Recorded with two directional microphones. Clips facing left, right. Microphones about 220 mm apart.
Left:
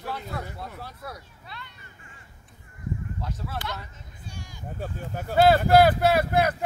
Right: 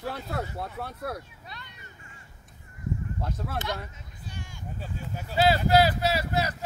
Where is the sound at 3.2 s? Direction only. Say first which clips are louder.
Right 1 dB; 55° right (ahead or behind).